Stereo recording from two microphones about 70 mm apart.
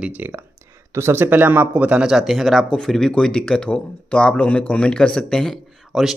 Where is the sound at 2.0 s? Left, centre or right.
Centre.